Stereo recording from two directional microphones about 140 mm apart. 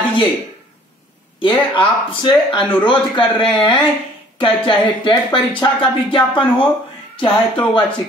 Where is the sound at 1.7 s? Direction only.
35° left (ahead or behind).